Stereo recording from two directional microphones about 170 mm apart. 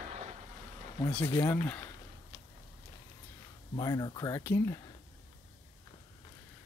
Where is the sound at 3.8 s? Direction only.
20° left (ahead or behind).